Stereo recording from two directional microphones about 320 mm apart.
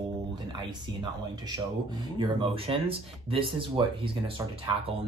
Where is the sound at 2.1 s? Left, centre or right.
Centre.